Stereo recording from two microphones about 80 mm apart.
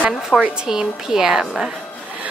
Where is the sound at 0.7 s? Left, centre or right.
Centre.